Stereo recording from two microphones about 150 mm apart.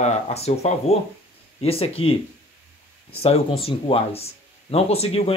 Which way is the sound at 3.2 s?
40° left (ahead or behind).